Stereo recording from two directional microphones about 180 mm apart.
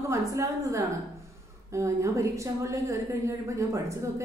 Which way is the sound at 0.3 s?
15° right (ahead or behind).